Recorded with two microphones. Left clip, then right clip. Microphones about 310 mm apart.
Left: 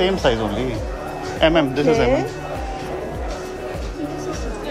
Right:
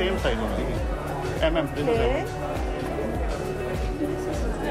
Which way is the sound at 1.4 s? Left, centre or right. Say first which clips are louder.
Left 9 dB; left.